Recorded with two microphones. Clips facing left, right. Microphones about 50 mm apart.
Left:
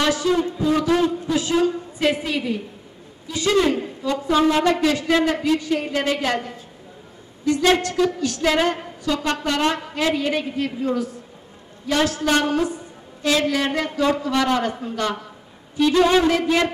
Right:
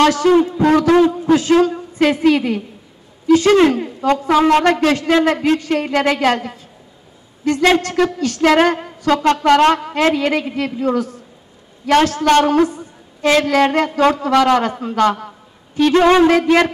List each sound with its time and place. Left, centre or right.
0.0 s a woman's voice: right
0.9 s a man's voice: right
1.3 s a woman's voice: right
15.7 s a woman's voice: right